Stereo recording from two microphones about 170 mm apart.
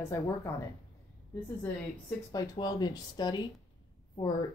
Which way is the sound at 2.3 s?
20° left (ahead or behind).